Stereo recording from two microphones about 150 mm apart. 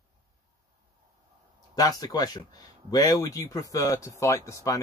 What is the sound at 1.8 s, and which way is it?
Speech, 25° left (ahead or behind).